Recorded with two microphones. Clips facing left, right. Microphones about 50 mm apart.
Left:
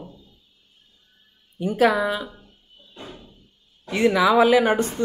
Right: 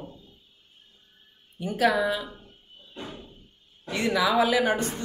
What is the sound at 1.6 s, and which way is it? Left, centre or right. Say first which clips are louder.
Speech: left 4 dB; left.